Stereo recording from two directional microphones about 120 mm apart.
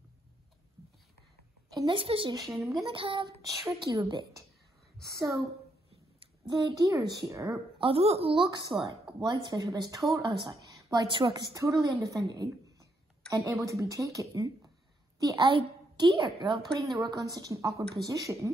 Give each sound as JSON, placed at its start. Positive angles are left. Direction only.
{"t": 1.7, "sound": "a sound", "side_deg": -30}
{"t": 2.0, "sound": "speech", "side_deg": -45}
{"t": 2.4, "sound": "speech", "side_deg": 0}
{"t": 2.9, "sound": "speech", "side_deg": -45}
{"t": 3.9, "sound": "a woman's voice", "side_deg": -30}
{"t": 5.0, "sound": "a woman's voice", "side_deg": -25}
{"t": 6.6, "sound": "a woman's voice", "side_deg": -30}
{"t": 7.8, "sound": "a woman's voice", "side_deg": -55}
{"t": 11.8, "sound": "a woman's voice", "side_deg": -25}
{"t": 15.4, "sound": "a woman's voice", "side_deg": -40}